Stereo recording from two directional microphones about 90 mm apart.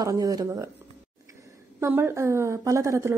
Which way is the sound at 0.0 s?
40° right (ahead or behind).